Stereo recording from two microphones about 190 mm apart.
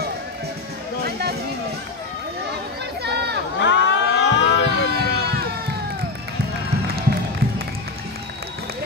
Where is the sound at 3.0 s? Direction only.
60° right (ahead or behind).